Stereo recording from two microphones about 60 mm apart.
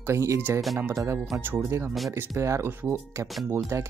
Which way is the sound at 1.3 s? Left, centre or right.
Right.